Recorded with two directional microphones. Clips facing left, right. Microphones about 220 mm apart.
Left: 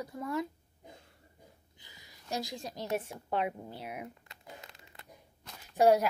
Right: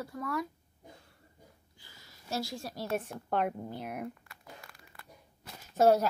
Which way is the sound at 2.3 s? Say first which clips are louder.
Right 1 dB; 20° left (ahead or behind).